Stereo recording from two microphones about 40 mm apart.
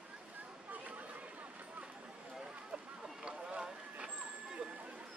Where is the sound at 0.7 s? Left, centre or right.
Right.